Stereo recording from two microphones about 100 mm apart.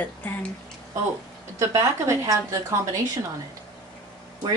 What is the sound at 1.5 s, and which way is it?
A woman's voice, 30° right (ahead or behind).